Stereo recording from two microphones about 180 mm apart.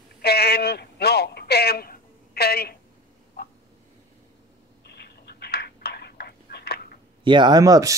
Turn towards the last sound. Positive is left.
turn(degrees=-20)  # may be behind; listen again after turning